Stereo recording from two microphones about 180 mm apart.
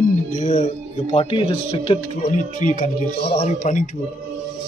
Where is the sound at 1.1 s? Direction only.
30° left (ahead or behind); by 3.9 s 45° left (ahead or behind).